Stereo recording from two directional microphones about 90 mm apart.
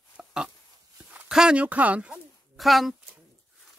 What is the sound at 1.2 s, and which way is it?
Speech, 10° right (ahead or behind).